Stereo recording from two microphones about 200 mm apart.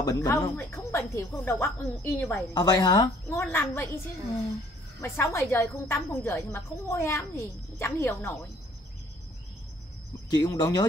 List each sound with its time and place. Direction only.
0.0 s a woman's voice: 15° left (ahead or behind)
2.5 s a woman's voice: 20° left (ahead or behind)
5.0 s a woman's voice: 15° left (ahead or behind)
10.3 s speech: 20° left (ahead or behind)